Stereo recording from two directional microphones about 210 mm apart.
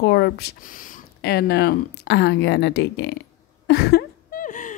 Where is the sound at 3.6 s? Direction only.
50° left (ahead or behind).